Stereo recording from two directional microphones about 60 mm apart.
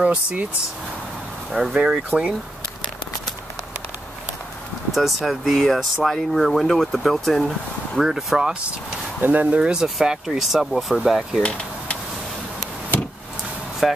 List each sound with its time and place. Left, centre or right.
0.0 s speech: right
1.5 s speech: centre
4.9 s speech: centre
9.2 s speech: right
9.6 s speech: centre
11.4 s a sound: centre
13.8 s speech: centre